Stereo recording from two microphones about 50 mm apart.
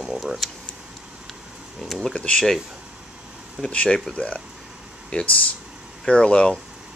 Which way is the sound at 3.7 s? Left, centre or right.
Left.